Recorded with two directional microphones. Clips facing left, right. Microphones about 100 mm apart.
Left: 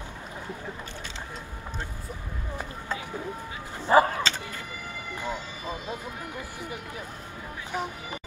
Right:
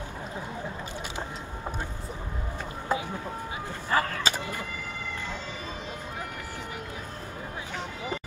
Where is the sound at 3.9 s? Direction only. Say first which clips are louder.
Left 7 dB; 20° left (ahead or behind).